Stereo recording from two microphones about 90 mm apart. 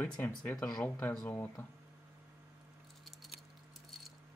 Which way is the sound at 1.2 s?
25° left (ahead or behind).